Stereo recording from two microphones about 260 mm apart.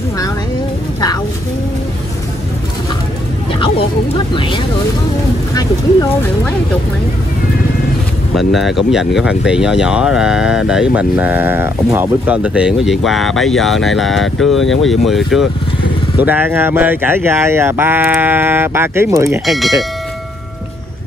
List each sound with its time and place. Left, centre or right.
3.5 s a sound: centre
8.4 s speech: centre
19.4 s speech: centre